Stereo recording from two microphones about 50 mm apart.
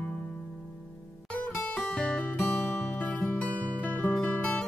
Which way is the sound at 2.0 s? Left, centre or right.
Left.